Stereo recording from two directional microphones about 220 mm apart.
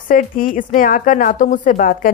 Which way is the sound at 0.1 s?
40° left (ahead or behind).